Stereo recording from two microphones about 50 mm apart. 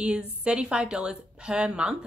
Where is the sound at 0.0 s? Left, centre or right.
Centre.